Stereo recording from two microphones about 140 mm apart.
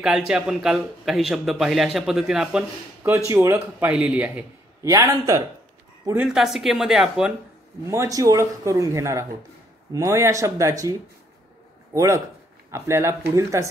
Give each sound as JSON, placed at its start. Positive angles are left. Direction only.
{"t": 0.0, "sound": "a man's voice", "side_deg": -5}
{"t": 3.3, "sound": "speech", "side_deg": -15}
{"t": 4.8, "sound": "a man's voice", "side_deg": -20}
{"t": 6.1, "sound": "a man's voice", "side_deg": -5}
{"t": 7.8, "sound": "a man's voice", "side_deg": -20}